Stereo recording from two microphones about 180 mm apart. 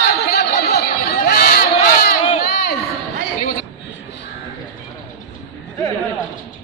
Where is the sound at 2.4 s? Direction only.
60° left (ahead or behind).